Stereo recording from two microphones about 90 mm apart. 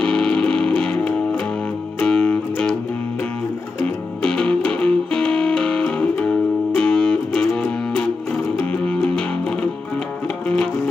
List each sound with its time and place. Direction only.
0.0 s music: 10° left (ahead or behind)
3.8 s music: 10° left (ahead or behind)